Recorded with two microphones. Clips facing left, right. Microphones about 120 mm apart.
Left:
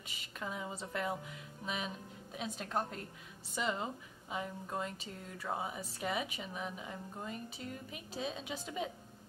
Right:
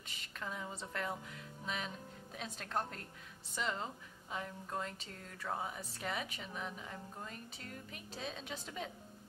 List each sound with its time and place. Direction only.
0.0 s a woman's voice: 10° left (ahead or behind)